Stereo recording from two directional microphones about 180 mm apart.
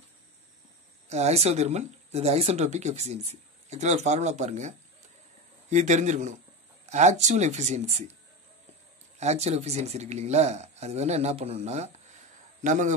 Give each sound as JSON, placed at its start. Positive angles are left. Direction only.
{"t": 1.0, "sound": "speech", "side_deg": -40}
{"t": 9.2, "sound": "a man's voice", "side_deg": -40}